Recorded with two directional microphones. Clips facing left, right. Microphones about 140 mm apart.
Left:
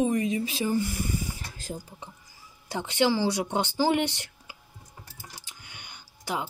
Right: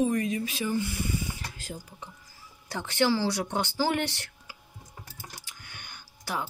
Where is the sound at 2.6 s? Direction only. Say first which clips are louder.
Left 1 dB; 20° left (ahead or behind).